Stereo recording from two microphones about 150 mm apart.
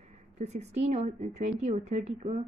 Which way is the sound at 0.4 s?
45° right (ahead or behind).